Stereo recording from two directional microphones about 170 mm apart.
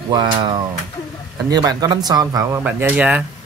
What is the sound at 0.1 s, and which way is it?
Speech, 25° right (ahead or behind).